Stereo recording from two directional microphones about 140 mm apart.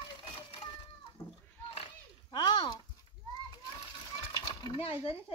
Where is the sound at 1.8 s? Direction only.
35° left (ahead or behind).